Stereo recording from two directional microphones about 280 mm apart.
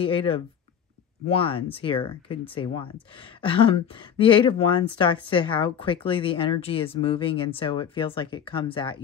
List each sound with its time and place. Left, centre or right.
0.0 s speech: centre